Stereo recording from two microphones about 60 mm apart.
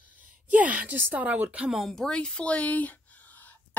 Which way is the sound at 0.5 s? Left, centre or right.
Right.